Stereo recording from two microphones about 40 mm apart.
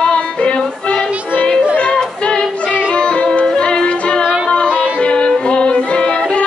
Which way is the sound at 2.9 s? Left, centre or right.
Left.